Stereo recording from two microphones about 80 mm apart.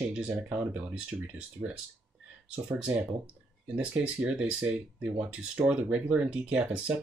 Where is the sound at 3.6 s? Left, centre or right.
Centre.